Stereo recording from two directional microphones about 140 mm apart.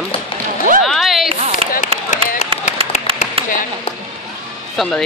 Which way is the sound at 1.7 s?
60° left (ahead or behind).